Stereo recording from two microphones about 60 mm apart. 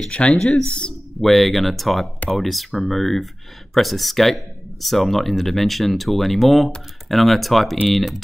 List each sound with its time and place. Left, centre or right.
0.1 s speech: centre
1.2 s speech: centre